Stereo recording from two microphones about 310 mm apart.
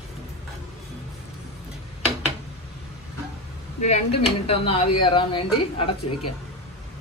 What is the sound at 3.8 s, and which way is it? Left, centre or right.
Speech, centre.